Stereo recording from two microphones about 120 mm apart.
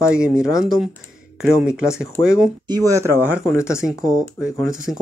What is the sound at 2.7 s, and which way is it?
Speech, 30° right (ahead or behind).